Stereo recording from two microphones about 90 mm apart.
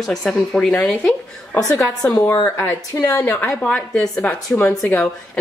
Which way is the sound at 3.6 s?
20° left (ahead or behind).